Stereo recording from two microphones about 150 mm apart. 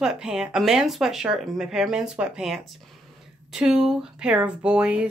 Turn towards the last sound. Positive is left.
turn(degrees=-5)  # may be behind; listen again after turning